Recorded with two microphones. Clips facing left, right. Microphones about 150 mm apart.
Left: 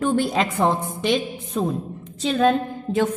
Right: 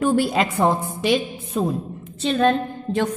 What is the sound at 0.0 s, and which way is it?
A woman's voice, 10° right (ahead or behind).